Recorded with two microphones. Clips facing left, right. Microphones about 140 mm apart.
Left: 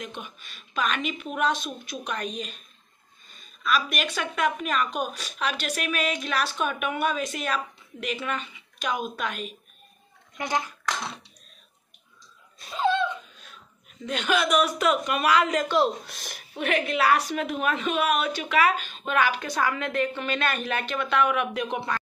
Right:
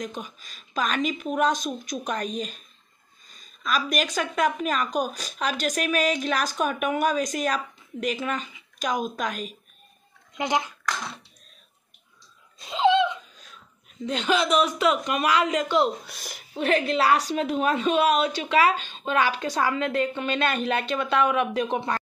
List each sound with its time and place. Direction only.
0.0 s a woman's voice: 35° right (ahead or behind)
10.3 s speech: 20° right (ahead or behind)
12.6 s laughter: 20° right (ahead or behind)
14.0 s a woman's voice: 25° right (ahead or behind)
15.0 s a woman's voice: 35° right (ahead or behind)
16.1 s speech: 5° right (ahead or behind)
16.3 s a woman's voice: 30° right (ahead or behind)